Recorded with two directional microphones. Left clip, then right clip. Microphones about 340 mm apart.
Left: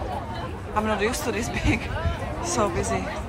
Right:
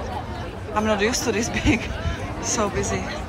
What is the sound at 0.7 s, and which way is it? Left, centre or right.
Speech, centre.